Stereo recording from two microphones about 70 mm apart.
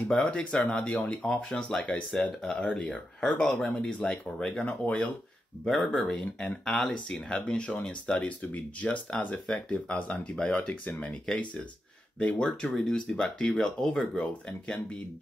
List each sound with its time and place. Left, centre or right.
0.1 s speech: centre
2.6 s speech: centre
5.7 s speech: centre
8.3 s speech: left
9.1 s speech: centre